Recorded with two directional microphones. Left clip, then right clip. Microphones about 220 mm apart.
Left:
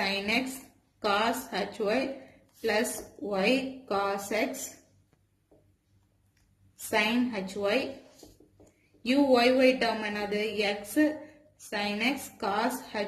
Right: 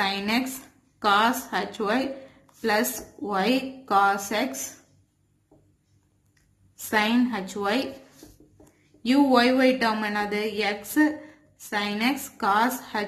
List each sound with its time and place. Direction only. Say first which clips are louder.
0.0 s a sound: right 3 dB; 20° right (ahead or behind)
0.9 s a woman's voice: right 6 dB; 20° right (ahead or behind)
6.9 s a woman's voice: right 4 dB; 20° right (ahead or behind)
9.0 s a woman's voice: right 3 dB; 25° right (ahead or behind)